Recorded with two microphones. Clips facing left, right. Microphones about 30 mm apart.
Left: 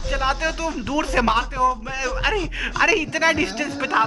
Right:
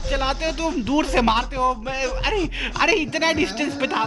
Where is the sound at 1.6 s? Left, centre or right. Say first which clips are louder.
Left 1 dB; right.